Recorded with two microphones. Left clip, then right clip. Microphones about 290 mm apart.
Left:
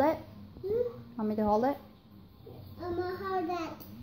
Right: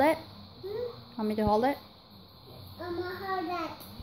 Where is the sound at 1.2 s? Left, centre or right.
Centre.